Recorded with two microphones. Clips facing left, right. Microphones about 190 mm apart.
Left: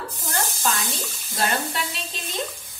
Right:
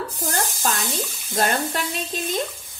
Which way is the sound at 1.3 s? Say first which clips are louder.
Right 3 dB; 50° right (ahead or behind).